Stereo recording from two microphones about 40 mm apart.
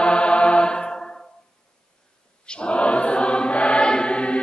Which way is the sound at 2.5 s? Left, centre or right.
Left.